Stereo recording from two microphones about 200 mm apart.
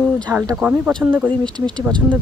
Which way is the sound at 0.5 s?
5° right (ahead or behind).